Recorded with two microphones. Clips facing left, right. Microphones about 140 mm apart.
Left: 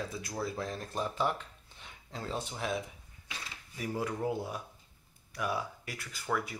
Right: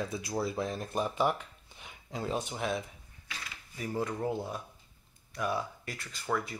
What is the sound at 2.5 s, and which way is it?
Speech, centre (ahead or behind).